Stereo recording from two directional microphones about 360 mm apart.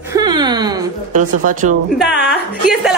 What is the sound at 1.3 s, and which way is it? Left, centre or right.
Speech, right.